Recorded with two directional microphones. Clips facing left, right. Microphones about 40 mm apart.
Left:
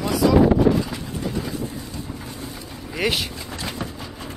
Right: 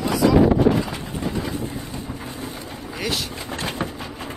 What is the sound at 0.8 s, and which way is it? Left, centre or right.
Vehicle, right.